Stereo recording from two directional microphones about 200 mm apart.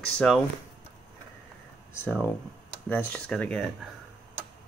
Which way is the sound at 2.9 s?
5° left (ahead or behind).